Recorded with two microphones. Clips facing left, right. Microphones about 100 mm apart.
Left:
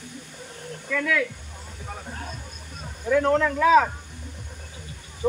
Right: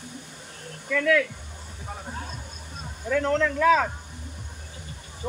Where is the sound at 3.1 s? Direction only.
10° left (ahead or behind).